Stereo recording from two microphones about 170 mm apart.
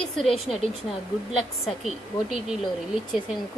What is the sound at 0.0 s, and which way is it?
Speech, centre (ahead or behind).